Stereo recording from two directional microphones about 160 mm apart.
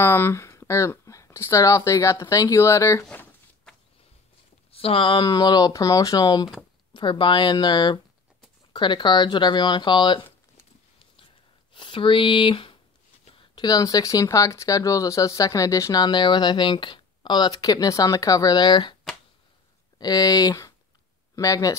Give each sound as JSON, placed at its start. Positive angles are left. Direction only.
{"t": 0.0, "sound": "speech", "side_deg": 15}
{"t": 4.6, "sound": "speech", "side_deg": 35}
{"t": 11.7, "sound": "speech", "side_deg": 30}
{"t": 20.0, "sound": "speech", "side_deg": 25}